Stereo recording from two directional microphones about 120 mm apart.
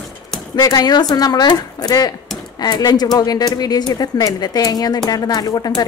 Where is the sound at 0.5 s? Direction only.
35° left (ahead or behind).